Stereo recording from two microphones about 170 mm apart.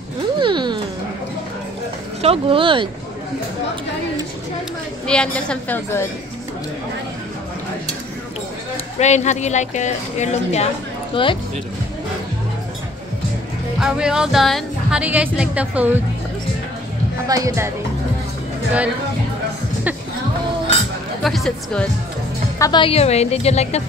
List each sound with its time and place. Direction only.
0.4 s music: 25° right (ahead or behind)
2.2 s speech: 35° right (ahead or behind)
5.0 s a woman's voice: 5° left (ahead or behind)
9.0 s a woman's voice: 45° left (ahead or behind)
11.2 s a woman's voice: 30° left (ahead or behind)
13.7 s speech: 5° right (ahead or behind)
17.3 s speech: 20° right (ahead or behind)
21.2 s speech: centre (ahead or behind)
22.6 s a woman's voice: 25° left (ahead or behind)